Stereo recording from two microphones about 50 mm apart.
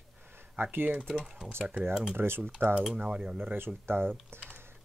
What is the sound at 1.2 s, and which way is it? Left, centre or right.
Speech, centre.